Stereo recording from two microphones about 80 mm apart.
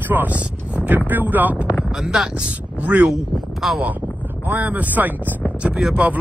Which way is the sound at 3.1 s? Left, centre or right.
Centre.